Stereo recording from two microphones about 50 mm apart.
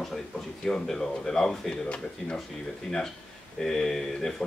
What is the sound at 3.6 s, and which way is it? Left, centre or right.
Speech, centre.